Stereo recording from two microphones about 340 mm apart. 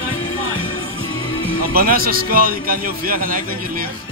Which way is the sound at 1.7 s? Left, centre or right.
Right.